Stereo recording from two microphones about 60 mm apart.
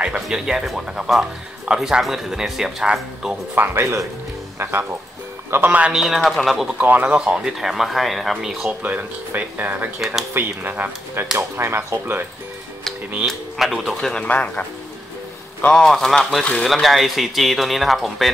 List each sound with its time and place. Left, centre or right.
0.0 s speech: centre
3.5 s speech: right
5.9 s speech: centre
6.8 s speech: right
7.2 s speech: centre
8.8 s speech: right
9.9 s speech: centre
10.3 s speech: right
13.2 s speech: centre
14.2 s speech: left
15.7 s a man's voice: centre